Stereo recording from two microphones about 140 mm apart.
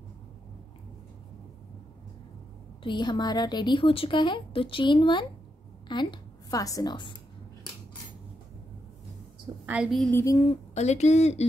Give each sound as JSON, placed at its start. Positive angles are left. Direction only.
{"t": 2.8, "sound": "a woman's voice", "side_deg": 35}
{"t": 9.7, "sound": "a woman's voice", "side_deg": -5}
{"t": 10.1, "sound": "a sound", "side_deg": 25}
{"t": 10.4, "sound": "speech", "side_deg": 50}